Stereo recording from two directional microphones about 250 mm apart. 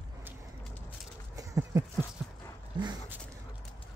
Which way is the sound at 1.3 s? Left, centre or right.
Centre.